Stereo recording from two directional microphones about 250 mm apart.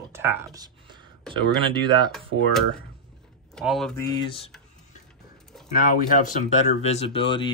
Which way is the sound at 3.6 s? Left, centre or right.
Centre.